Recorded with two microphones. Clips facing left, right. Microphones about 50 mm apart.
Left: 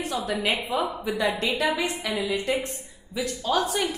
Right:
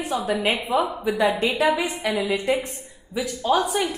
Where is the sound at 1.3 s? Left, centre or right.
Right.